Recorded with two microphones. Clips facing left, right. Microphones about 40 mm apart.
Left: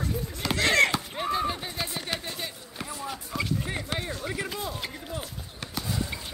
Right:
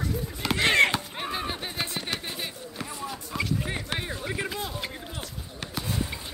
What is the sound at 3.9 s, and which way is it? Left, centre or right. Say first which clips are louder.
Speech: even; right.